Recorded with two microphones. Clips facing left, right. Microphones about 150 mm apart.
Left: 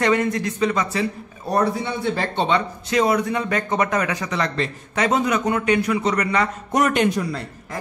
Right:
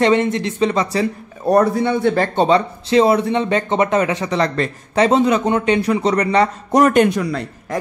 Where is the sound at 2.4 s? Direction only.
30° right (ahead or behind).